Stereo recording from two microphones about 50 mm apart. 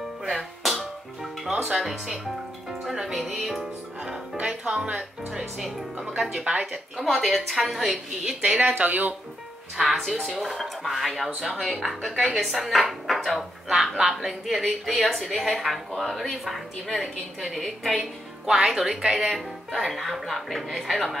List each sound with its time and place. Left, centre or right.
0.2 s music: centre
2.8 s speech: centre
8.7 s speech: right
9.8 s speech: centre
13.7 s speech: centre
18.4 s speech: centre